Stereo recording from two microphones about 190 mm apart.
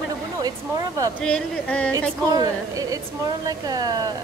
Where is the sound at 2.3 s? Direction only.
20° right (ahead or behind).